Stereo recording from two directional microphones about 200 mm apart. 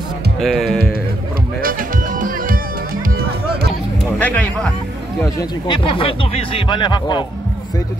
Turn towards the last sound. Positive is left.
turn(degrees=20)  # may be behind; listen again after turning